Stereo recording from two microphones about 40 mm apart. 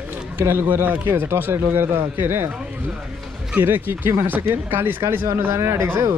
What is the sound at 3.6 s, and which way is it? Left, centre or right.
Speech, right.